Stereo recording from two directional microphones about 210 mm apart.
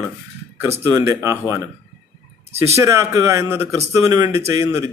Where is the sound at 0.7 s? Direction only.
15° right (ahead or behind).